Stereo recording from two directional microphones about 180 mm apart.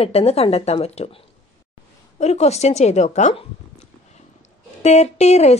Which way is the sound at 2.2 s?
40° left (ahead or behind).